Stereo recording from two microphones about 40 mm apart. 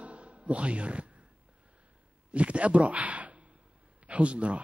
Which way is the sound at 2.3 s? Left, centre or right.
Right.